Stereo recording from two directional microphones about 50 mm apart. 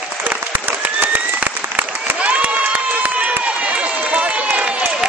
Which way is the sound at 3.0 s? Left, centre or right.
Right.